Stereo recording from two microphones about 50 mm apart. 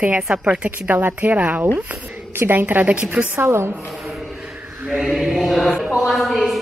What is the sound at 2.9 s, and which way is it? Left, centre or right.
Speech, right.